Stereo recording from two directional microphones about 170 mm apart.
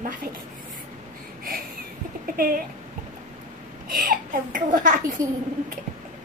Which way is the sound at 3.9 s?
55° right (ahead or behind).